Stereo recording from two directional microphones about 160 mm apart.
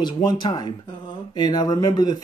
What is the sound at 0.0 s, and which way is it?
A man's voice, 25° left (ahead or behind).